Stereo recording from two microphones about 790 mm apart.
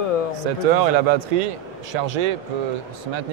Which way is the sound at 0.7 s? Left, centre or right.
Right.